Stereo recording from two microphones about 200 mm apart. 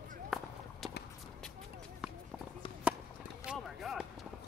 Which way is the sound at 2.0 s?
5° right (ahead or behind).